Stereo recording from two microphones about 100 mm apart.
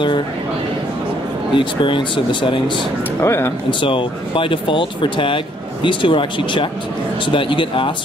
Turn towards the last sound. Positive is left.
turn(degrees=60)  # may be behind; listen again after turning